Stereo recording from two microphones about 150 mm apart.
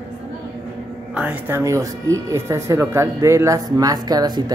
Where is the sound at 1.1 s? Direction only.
10° right (ahead or behind).